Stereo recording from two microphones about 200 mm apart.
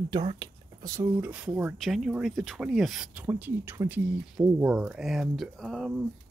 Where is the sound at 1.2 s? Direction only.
5° right (ahead or behind).